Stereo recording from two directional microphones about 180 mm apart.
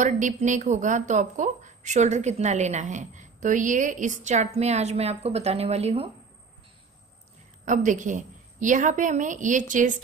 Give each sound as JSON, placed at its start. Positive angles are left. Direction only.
{"t": 0.0, "sound": "speech", "side_deg": -45}
{"t": 7.6, "sound": "a woman's voice", "side_deg": -45}